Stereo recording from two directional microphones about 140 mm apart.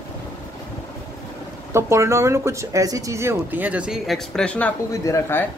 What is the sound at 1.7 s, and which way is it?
Speech, 20° right (ahead or behind).